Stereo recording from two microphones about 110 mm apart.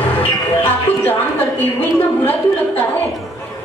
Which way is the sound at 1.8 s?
15° left (ahead or behind).